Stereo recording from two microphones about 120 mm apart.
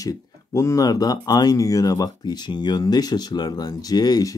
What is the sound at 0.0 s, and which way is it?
Speech, 30° left (ahead or behind).